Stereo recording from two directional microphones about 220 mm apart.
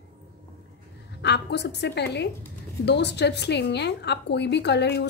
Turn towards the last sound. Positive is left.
turn(degrees=50)  # may be behind; listen again after turning